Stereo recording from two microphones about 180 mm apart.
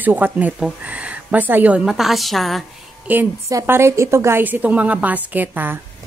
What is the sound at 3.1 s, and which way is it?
Speech, 15° right (ahead or behind).